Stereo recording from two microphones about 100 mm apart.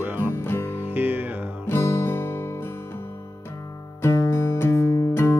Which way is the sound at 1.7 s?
30° left (ahead or behind).